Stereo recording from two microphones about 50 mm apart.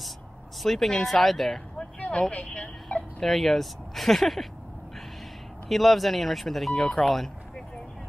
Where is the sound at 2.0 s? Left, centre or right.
Left.